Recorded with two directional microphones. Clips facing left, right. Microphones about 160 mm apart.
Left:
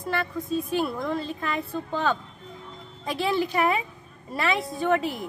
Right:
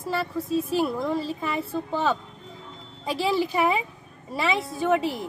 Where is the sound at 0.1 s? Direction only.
5° right (ahead or behind).